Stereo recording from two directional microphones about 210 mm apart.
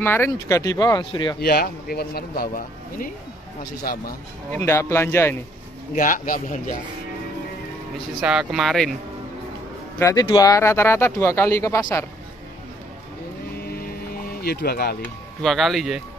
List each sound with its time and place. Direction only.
0.0 s speech: 10° left (ahead or behind)
1.4 s a man's voice: 45° left (ahead or behind)
4.5 s speech: 10° left (ahead or behind)
5.9 s speech: 40° left (ahead or behind)
8.2 s speech: 5° right (ahead or behind)
9.9 s speech: 15° left (ahead or behind)
14.4 s a man's voice: 50° left (ahead or behind)
15.4 s speech: centre (ahead or behind)